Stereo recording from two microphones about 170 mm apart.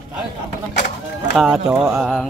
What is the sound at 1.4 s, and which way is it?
Mantra, 5° right (ahead or behind).